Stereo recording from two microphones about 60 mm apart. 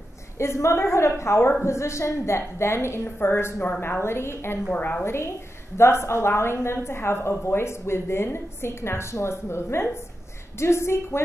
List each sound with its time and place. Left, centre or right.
0.4 s a woman's voice: left